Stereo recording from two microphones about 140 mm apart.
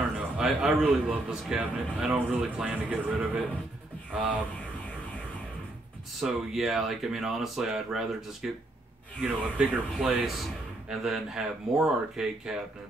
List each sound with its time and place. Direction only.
0.4 s a man's voice: 5° right (ahead or behind)
6.2 s speech: centre (ahead or behind)